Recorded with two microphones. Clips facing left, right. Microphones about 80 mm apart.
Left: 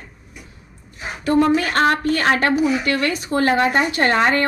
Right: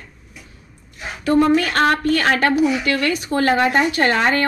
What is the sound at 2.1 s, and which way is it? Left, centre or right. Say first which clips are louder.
Speech: right 1 dB; left.